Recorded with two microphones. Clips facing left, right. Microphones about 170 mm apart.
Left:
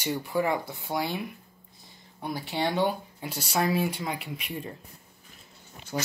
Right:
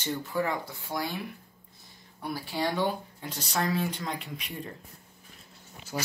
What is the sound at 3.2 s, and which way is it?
Speech, 10° left (ahead or behind).